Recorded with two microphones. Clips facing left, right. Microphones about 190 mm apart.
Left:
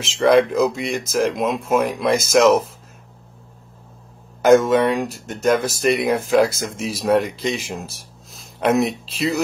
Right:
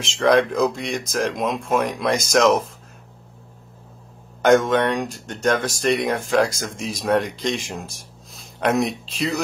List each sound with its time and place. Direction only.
0.0 s speech: 5° left (ahead or behind)
4.4 s speech: 5° left (ahead or behind)